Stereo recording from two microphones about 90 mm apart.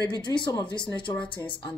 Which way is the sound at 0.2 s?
50° left (ahead or behind).